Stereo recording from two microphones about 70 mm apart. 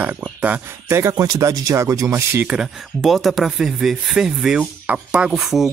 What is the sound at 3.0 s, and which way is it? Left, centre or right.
Speech, centre.